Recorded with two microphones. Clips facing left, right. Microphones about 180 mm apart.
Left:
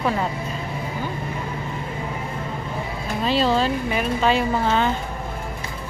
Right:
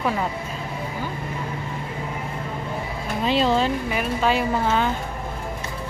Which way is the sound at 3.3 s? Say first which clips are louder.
Even; 20° right (ahead or behind).